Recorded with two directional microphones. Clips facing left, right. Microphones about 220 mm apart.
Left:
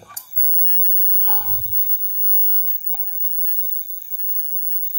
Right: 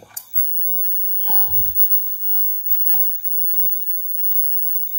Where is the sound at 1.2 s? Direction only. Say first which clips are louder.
Right 1 dB; 10° right (ahead or behind).